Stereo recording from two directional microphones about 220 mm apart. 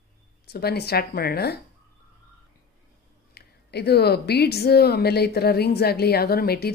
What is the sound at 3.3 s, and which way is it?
Speech, 50° left (ahead or behind).